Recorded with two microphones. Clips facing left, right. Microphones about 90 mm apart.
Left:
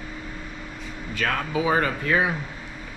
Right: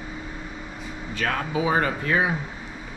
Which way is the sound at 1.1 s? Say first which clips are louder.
Even; 25° right (ahead or behind).